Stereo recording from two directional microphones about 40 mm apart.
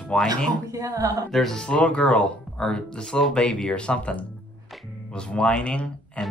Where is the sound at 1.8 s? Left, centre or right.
Left.